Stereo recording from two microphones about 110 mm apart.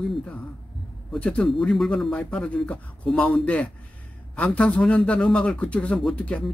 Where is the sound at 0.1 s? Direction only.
10° left (ahead or behind).